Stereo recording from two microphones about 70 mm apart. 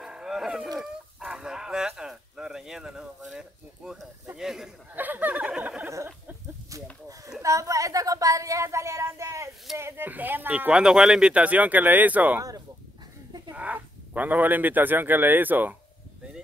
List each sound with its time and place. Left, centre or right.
0.0 s a sound: centre
0.7 s a man's voice: centre
4.9 s speech: right
5.3 s a sound: centre
6.7 s a woman's voice: right
10.0 s speech: right
10.7 s speech: centre
12.4 s speech: right
13.6 s speech: right